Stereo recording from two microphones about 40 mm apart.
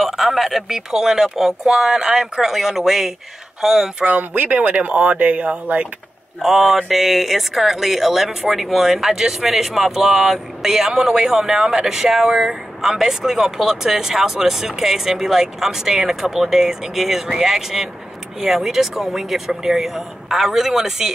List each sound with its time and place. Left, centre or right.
0.0 s speech: centre
4.1 s speech: right
6.4 s speech: centre